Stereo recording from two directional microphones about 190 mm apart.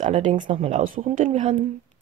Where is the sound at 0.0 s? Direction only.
40° right (ahead or behind).